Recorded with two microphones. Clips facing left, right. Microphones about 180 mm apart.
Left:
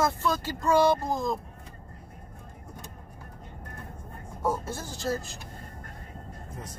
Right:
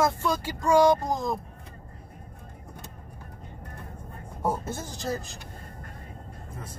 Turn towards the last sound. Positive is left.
turn(degrees=-15)  # may be behind; listen again after turning